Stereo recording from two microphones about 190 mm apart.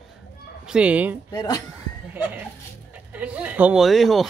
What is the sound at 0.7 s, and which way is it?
Speech, 5° right (ahead or behind).